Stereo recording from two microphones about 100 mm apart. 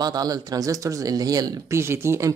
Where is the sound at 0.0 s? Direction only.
40° right (ahead or behind).